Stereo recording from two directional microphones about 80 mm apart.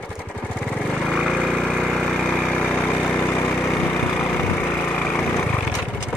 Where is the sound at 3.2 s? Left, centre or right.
Left.